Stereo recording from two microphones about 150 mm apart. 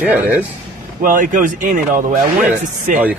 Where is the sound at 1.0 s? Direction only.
65° right (ahead or behind).